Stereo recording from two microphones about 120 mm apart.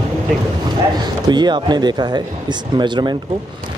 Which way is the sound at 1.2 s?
40° right (ahead or behind).